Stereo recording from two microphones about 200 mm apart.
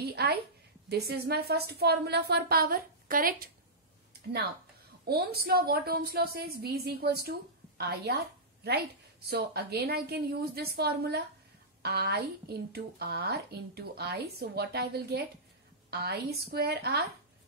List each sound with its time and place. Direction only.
0.1 s a sound: 50° right (ahead or behind)
0.8 s speech: 55° right (ahead or behind)
5.0 s speech: 50° right (ahead or behind)
9.3 s speech: 50° right (ahead or behind)